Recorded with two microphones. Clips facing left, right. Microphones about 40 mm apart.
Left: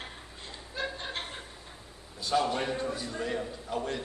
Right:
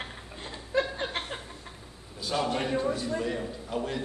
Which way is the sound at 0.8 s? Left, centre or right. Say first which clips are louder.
Right 7 dB; right.